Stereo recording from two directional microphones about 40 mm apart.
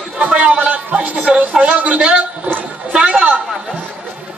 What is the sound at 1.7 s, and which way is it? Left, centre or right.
Speech, right.